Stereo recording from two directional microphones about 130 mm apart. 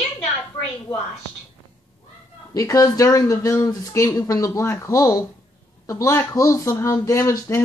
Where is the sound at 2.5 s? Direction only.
25° left (ahead or behind).